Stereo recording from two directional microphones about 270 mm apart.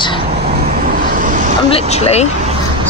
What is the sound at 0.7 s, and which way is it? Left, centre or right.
Vehicle, right.